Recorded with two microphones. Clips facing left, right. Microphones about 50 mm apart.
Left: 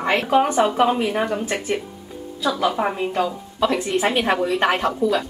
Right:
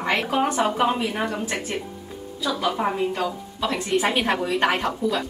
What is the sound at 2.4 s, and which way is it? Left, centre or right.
Speech, left.